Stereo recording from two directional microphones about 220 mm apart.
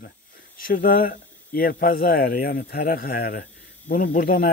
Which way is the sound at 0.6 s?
40° left (ahead or behind).